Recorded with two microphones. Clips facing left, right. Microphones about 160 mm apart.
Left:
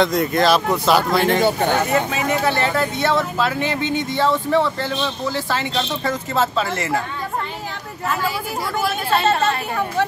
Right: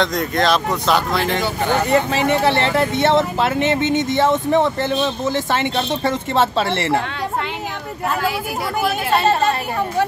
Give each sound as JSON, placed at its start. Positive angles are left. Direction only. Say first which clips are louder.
{"t": 0.0, "sound": "speech", "louder": "left 2 dB", "side_deg": 5}
{"t": 1.9, "sound": "speech", "louder": "right 3 dB", "side_deg": -30}